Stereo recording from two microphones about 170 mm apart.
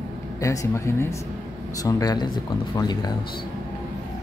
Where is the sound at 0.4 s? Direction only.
20° left (ahead or behind).